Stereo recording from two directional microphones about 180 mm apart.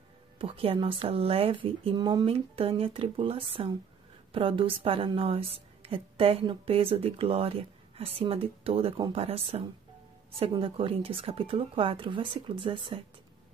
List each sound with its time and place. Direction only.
0.4 s speech: 30° right (ahead or behind)
10.4 s speech: 30° right (ahead or behind)